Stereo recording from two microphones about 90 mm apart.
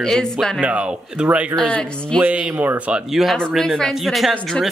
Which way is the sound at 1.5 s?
5° left (ahead or behind).